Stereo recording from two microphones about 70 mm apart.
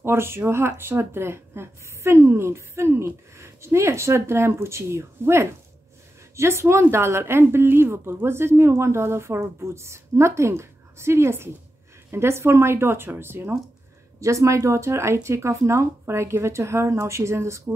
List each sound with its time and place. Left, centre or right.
0.0 s speech: right
14.2 s speech: right